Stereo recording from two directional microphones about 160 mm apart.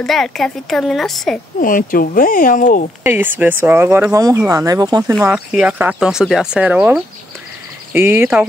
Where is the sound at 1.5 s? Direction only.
60° left (ahead or behind).